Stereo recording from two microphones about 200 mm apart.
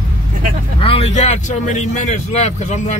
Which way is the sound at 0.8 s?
30° left (ahead or behind).